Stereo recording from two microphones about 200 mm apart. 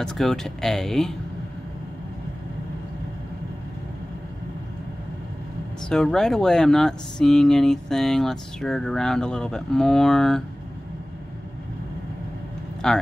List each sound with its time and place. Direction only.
0.0 s speech: centre (ahead or behind)
5.9 s speech: centre (ahead or behind)
12.8 s speech: 5° left (ahead or behind)